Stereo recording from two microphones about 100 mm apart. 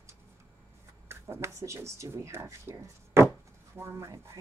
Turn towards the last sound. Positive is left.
turn(degrees=-25)  # may be behind; listen again after turning